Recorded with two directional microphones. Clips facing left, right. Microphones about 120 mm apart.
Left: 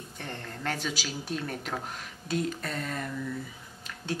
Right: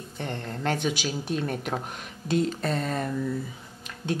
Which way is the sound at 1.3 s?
25° right (ahead or behind).